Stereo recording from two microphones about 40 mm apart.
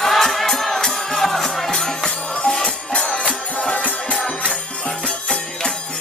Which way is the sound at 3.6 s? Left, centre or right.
Left.